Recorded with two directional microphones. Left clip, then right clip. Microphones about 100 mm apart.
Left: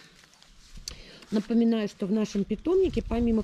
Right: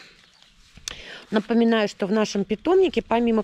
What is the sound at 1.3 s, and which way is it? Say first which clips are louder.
Speech: right 7 dB; 35° right (ahead or behind).